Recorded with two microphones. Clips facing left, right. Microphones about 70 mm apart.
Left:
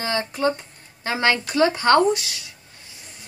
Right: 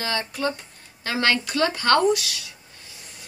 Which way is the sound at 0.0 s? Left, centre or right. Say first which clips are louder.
Left 3 dB; left.